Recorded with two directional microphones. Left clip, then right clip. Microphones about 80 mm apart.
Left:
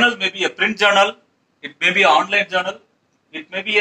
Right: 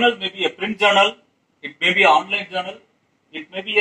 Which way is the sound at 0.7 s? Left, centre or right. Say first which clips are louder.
Even; right.